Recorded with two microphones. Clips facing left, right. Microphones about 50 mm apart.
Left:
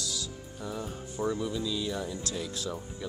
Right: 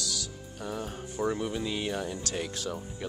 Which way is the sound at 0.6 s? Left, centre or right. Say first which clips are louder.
Right 1 dB; right.